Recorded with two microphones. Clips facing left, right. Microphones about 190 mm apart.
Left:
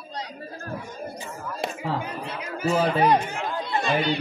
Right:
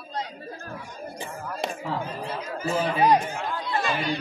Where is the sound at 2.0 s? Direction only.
70° left (ahead or behind).